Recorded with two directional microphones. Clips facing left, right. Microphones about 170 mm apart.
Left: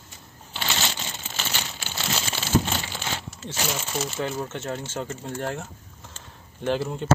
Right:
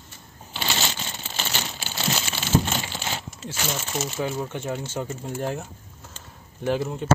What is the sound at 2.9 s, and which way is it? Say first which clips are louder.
Coin: right 1 dB; 10° right (ahead or behind).